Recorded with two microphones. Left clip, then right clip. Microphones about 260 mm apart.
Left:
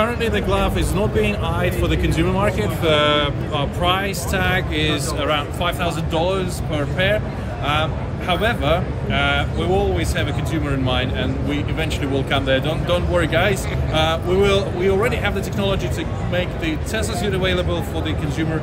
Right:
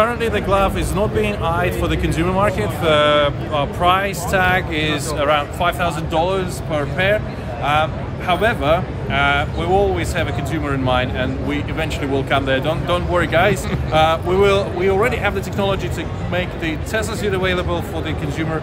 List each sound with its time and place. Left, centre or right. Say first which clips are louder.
0.0 s speech: right 2 dB; centre